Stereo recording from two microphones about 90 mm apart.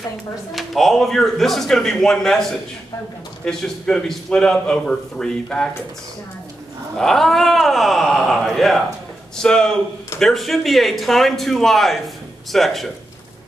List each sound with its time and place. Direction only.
0.5 s speech: centre (ahead or behind)
3.4 s a man's voice: 5° left (ahead or behind)
7.0 s a man's voice: 5° left (ahead or behind)